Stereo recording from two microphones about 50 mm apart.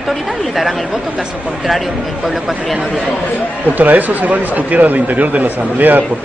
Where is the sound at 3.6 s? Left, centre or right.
Right.